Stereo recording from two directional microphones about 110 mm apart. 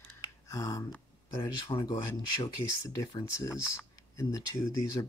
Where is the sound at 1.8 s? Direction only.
35° left (ahead or behind).